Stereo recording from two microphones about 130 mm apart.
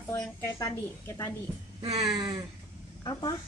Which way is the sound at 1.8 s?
50° right (ahead or behind).